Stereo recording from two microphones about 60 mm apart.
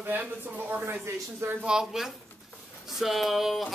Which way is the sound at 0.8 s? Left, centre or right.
Right.